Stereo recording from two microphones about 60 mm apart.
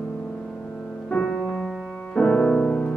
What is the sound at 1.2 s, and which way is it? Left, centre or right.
Music, centre.